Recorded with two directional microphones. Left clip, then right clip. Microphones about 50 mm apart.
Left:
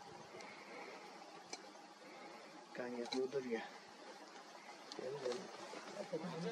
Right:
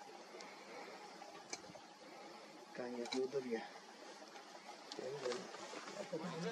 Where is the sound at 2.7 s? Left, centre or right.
Centre.